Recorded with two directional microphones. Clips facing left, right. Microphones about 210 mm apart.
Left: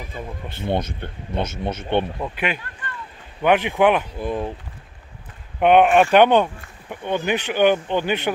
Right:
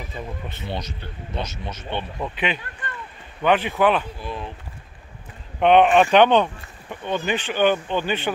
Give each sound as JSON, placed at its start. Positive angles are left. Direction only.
{"t": 0.6, "sound": "speech", "side_deg": 55}
{"t": 2.1, "sound": "speech", "side_deg": 5}
{"t": 4.2, "sound": "speech", "side_deg": 50}
{"t": 5.6, "sound": "speech", "side_deg": 10}